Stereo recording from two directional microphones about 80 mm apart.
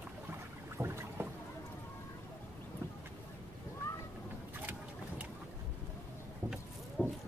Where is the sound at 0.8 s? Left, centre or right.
Right.